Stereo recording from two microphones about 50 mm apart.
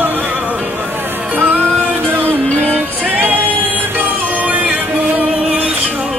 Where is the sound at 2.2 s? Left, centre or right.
Right.